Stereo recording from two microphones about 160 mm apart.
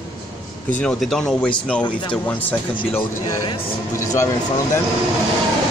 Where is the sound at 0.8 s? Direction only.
Centre (ahead or behind).